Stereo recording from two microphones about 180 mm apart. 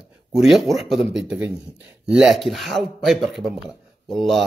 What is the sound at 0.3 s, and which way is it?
Speech, centre (ahead or behind).